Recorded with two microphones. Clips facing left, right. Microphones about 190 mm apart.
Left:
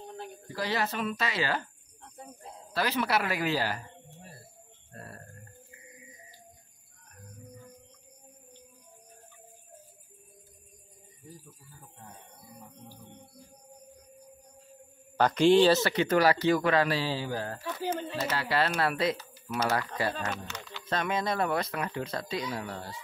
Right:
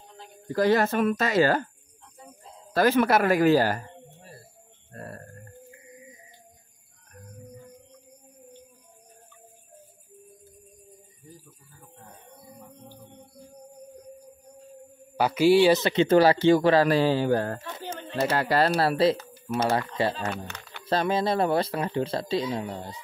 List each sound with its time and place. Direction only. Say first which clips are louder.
0.5 s speech: right 10 dB; 50° right (ahead or behind)
2.7 s speech: right 8 dB; 50° right (ahead or behind)
4.9 s a sound: right 6 dB; 45° right (ahead or behind)
15.1 s speech: right 2 dB; 10° right (ahead or behind); by 16.9 s 30° right (ahead or behind)
16.9 s speech: right 9 dB; 55° right (ahead or behind)
17.6 s a sound: left 4 dB; 25° right (ahead or behind)
18.3 s speech: right 6 dB; 45° right (ahead or behind); by 23.0 s 20° right (ahead or behind)